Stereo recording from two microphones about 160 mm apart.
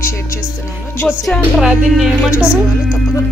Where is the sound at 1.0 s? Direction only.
5° right (ahead or behind).